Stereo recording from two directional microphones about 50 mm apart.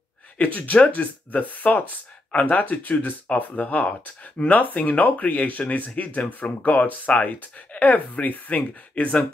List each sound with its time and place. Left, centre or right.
0.4 s speech: left